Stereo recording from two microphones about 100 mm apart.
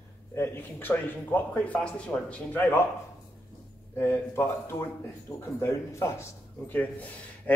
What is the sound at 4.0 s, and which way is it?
Speech, 25° left (ahead or behind).